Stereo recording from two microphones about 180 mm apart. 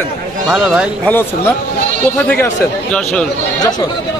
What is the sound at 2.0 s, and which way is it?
Speech, 10° left (ahead or behind).